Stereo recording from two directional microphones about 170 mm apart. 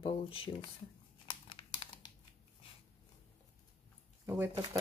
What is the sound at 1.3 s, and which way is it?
Crumpling, 30° left (ahead or behind).